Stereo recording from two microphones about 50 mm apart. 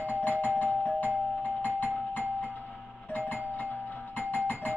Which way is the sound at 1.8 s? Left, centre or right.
Left.